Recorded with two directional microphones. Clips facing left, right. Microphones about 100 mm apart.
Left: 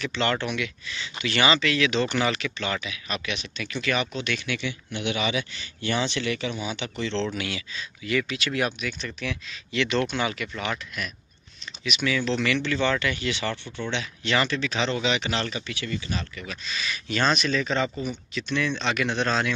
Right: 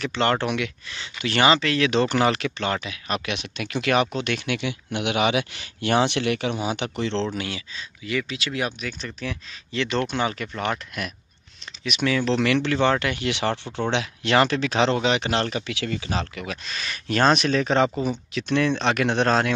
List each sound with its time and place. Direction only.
0.0 s speech: 50° right (ahead or behind)
7.3 s speech: 35° right (ahead or behind); by 8.7 s 20° right (ahead or behind)
8.8 s speech: 35° right (ahead or behind); by 13.6 s 65° right (ahead or behind)
13.7 s speech: 80° right; by 15.6 s 55° right (ahead or behind)
15.6 s speech: 85° right
16.6 s speech: 50° right (ahead or behind)